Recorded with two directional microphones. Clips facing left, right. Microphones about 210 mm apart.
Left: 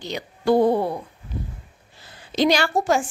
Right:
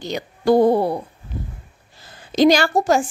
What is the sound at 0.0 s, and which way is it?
A woman's voice, 45° right (ahead or behind).